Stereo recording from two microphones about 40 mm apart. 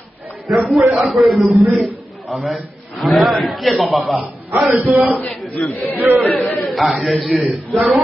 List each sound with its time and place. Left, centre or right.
0.5 s a man's voice: centre